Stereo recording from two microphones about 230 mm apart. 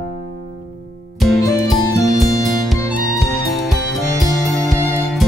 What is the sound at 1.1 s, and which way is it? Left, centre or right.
Music, centre.